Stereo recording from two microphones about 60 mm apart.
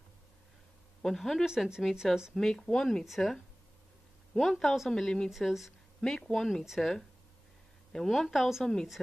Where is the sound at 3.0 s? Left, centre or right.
Centre.